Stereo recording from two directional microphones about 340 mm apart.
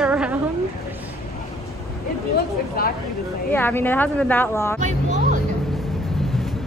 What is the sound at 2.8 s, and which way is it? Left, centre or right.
Speech, left.